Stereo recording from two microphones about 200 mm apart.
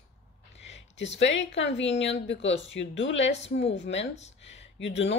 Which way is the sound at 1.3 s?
65° left (ahead or behind).